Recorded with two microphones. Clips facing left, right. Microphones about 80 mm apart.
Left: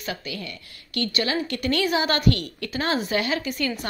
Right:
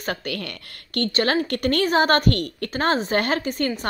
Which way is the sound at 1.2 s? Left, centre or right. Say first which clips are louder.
Right 4 dB; right.